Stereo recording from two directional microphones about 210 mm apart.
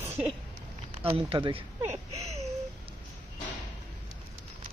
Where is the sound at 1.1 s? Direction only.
25° right (ahead or behind).